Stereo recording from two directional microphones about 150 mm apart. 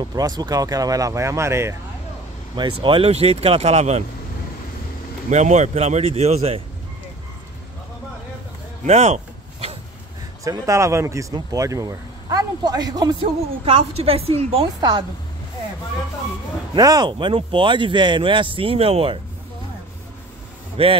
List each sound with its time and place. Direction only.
0.0 s speech: 25° right (ahead or behind)
2.5 s speech: 35° right (ahead or behind)
5.3 s speech: 50° right (ahead or behind)
8.8 s a sound: 45° right (ahead or behind)
10.4 s speech: 20° right (ahead or behind)
16.7 s speech: 25° right (ahead or behind)
20.8 s speech: 40° right (ahead or behind)